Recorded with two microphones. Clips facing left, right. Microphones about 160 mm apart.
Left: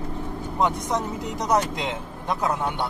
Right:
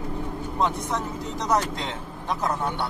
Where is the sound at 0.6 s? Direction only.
15° left (ahead or behind).